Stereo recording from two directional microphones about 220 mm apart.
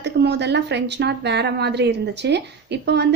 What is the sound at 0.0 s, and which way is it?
Speech, 50° right (ahead or behind).